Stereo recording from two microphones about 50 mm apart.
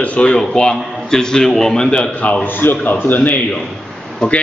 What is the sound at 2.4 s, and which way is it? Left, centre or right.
Speech, left.